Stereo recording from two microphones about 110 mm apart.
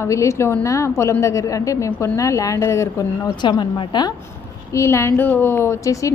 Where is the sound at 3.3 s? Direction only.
45° left (ahead or behind).